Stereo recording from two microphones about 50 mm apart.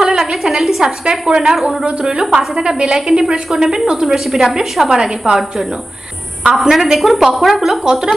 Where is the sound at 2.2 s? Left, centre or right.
Centre.